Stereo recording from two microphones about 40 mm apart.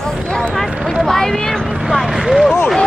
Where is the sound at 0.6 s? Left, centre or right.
Centre.